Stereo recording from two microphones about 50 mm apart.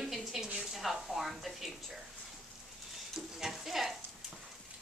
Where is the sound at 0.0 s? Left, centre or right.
Centre.